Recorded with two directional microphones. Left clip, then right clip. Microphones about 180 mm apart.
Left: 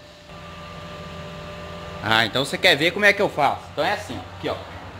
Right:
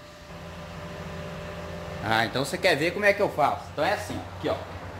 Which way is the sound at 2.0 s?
30° left (ahead or behind).